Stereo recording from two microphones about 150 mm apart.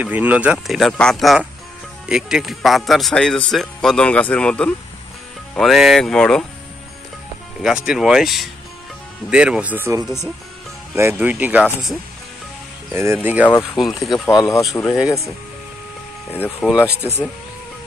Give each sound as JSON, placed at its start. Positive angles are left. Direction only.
{"t": 0.0, "sound": "a man's voice", "side_deg": -10}
{"t": 7.6, "sound": "a man's voice", "side_deg": -5}
{"t": 11.0, "sound": "speech", "side_deg": -10}
{"t": 12.9, "sound": "speech", "side_deg": -15}
{"t": 13.7, "sound": "a man's voice", "side_deg": 0}
{"t": 14.2, "sound": "speech", "side_deg": 20}
{"t": 16.3, "sound": "speech", "side_deg": 10}
{"t": 16.6, "sound": "a man's voice", "side_deg": -5}